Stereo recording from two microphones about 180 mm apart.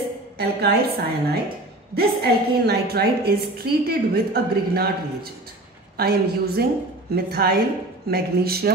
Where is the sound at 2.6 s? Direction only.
65° right (ahead or behind).